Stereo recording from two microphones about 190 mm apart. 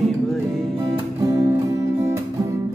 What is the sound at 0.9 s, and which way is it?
Music, 15° right (ahead or behind).